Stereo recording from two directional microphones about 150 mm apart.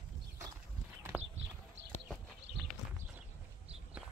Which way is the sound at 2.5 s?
90° right.